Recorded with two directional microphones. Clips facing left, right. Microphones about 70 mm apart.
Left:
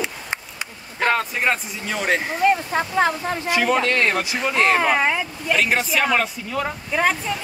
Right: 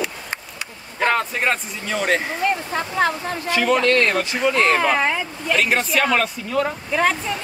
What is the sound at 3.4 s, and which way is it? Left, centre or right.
Speech, centre.